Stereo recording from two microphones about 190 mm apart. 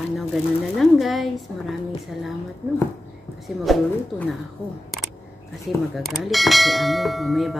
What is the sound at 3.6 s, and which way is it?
Clang, centre (ahead or behind).